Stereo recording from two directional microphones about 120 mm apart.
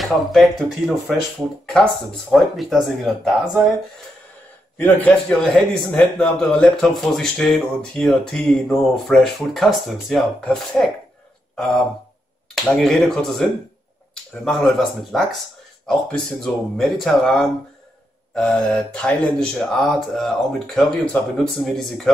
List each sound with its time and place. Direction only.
0.0 s a man's voice: centre (ahead or behind)
2.3 s a man's voice: centre (ahead or behind)
4.7 s a man's voice: 15° left (ahead or behind)
16.7 s a man's voice: centre (ahead or behind)